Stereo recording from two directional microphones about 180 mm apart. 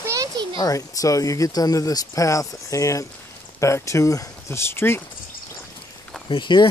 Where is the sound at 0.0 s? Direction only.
20° right (ahead or behind).